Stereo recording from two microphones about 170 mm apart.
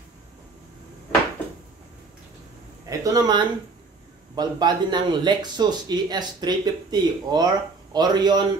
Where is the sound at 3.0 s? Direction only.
25° right (ahead or behind).